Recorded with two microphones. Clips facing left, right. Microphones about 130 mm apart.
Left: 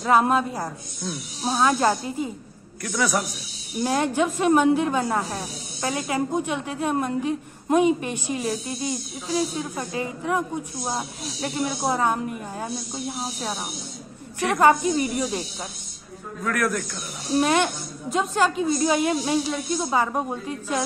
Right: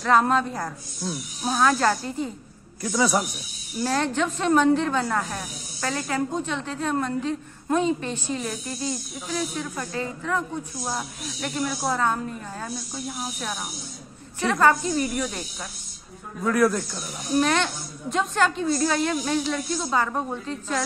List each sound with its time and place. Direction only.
0.0 s a woman's voice: 10° left (ahead or behind)
2.8 s a man's voice: 20° right (ahead or behind)
3.7 s a woman's voice: 15° left (ahead or behind)
5.2 s speech: 25° left (ahead or behind)
5.9 s a woman's voice: 15° left (ahead or behind)
8.4 s speech: 30° left (ahead or behind); by 10.6 s 15° left (ahead or behind)
10.8 s speech: 25° left (ahead or behind)
14.4 s speech: 15° left (ahead or behind)
16.4 s a man's voice: 20° right (ahead or behind)
17.4 s a woman's voice: 15° left (ahead or behind)